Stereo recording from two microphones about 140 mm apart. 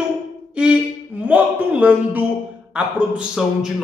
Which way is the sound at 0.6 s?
10° right (ahead or behind).